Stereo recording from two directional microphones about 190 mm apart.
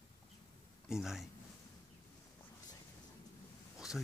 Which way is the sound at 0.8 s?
Centre (ahead or behind).